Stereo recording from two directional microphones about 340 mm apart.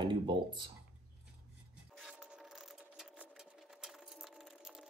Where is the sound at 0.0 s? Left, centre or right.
Centre.